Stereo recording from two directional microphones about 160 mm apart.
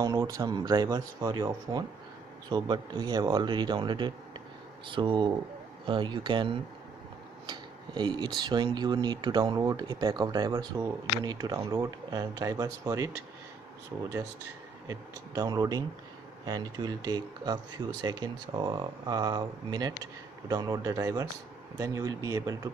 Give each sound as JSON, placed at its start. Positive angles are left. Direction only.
{"t": 0.0, "sound": "speech", "side_deg": -20}
{"t": 7.4, "sound": "tick-tock", "side_deg": -25}
{"t": 8.4, "sound": "speech", "side_deg": -25}
{"t": 14.9, "sound": "speech", "side_deg": -20}